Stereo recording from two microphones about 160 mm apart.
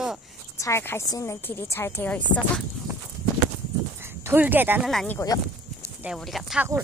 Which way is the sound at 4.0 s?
15° right (ahead or behind).